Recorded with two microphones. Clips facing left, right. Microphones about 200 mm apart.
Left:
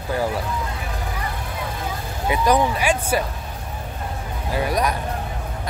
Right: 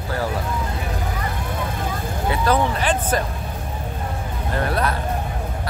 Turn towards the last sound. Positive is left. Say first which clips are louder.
# even
turn(degrees=15)  # may be behind; listen again after turning